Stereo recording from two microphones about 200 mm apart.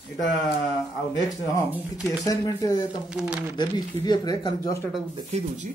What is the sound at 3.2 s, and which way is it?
Speech, 5° right (ahead or behind).